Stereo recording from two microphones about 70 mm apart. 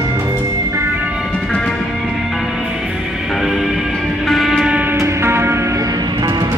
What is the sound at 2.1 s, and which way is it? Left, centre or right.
Music, centre.